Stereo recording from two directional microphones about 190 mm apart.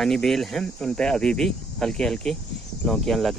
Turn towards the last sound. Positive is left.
turn(degrees=0)  # may be behind; listen again after turning